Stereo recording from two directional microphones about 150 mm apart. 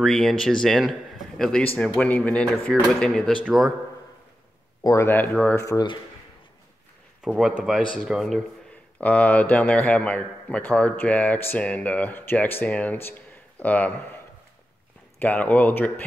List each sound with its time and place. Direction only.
0.0 s a man's voice: 5° left (ahead or behind)
4.8 s a man's voice: 15° left (ahead or behind)
5.7 s speech: 25° left (ahead or behind)
7.2 s speech: 5° right (ahead or behind)
9.0 s a man's voice: 10° left (ahead or behind)
15.1 s a man's voice: 10° left (ahead or behind)